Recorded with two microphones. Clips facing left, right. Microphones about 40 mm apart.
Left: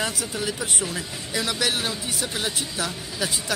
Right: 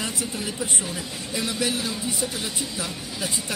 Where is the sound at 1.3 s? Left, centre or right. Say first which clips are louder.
Left 1 dB; left.